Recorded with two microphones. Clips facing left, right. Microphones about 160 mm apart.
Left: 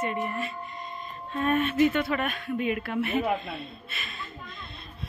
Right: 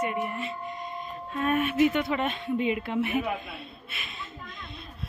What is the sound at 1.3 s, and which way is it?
Speech, 5° right (ahead or behind).